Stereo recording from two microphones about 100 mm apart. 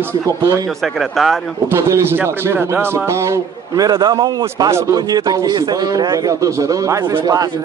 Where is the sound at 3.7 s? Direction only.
45° right (ahead or behind).